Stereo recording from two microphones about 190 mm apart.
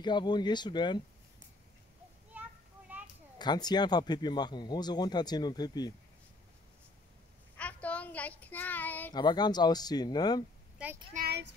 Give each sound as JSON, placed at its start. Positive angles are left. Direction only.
{"t": 0.0, "sound": "speech", "side_deg": 25}
{"t": 2.9, "sound": "a sound", "side_deg": -10}
{"t": 3.3, "sound": "speech", "side_deg": 20}
{"t": 7.5, "sound": "child singing", "side_deg": 5}
{"t": 9.1, "sound": "speech", "side_deg": 20}
{"t": 10.8, "sound": "a child's voice", "side_deg": -5}
{"t": 11.1, "sound": "child singing", "side_deg": -60}